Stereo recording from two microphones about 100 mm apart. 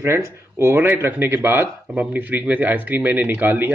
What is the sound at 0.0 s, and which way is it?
Speech, 25° right (ahead or behind).